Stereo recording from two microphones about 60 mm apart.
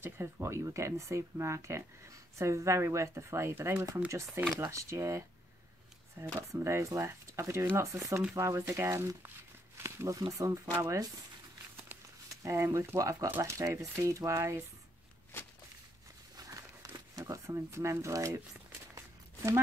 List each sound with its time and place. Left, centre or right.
0.0 s speech: right
3.7 s speech: right
4.6 s speech: right
10.0 s speech: right
10.5 s speech: right
12.4 s speech: right
16.3 s a sound: right
17.3 s speech: right
18.9 s a sound: right